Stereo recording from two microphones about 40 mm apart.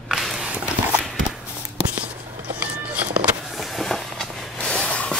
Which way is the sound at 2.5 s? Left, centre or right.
Right.